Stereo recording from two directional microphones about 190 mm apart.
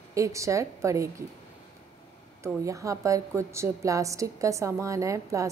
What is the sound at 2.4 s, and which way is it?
A woman's voice, 15° right (ahead or behind).